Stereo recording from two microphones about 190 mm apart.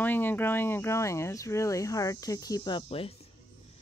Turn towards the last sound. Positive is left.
turn(degrees=30)  # may be behind; listen again after turning